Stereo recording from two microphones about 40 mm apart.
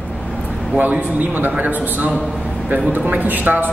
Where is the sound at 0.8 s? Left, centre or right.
Right.